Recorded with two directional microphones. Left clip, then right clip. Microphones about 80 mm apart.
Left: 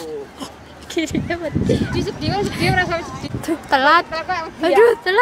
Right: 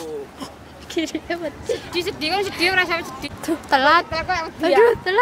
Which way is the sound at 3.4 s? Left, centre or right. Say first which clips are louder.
Left 1 dB; centre.